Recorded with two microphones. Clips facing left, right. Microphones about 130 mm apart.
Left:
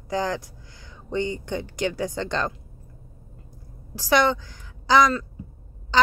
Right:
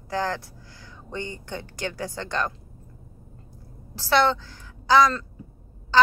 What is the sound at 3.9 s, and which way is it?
A woman's voice, 15° left (ahead or behind).